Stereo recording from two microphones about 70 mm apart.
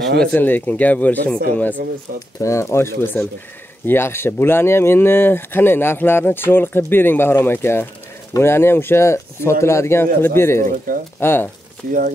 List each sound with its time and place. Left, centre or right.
0.3 s speech: left
2.4 s speech: left